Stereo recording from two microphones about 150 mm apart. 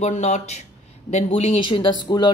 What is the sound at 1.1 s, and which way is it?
Speech, 35° left (ahead or behind).